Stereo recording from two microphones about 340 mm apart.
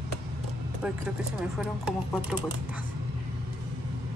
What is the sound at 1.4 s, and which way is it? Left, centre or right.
Speech, centre.